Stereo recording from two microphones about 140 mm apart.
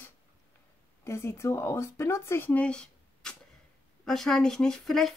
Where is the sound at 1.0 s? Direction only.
20° left (ahead or behind).